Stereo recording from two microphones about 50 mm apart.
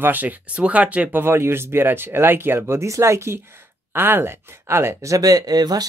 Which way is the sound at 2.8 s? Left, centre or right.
Right.